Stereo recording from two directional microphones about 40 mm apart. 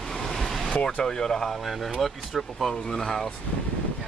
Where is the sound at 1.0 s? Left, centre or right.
Centre.